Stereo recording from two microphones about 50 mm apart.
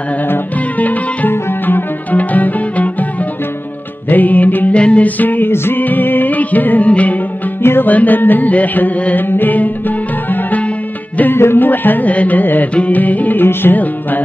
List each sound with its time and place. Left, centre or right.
0.7 s music: left
4.1 s music: left
4.7 s music: left
7.6 s music: left
7.9 s music: left
11.3 s music: left
13.4 s music: left